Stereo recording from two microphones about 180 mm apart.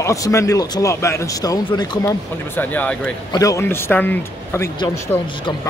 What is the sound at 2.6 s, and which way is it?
A man's voice, 10° left (ahead or behind).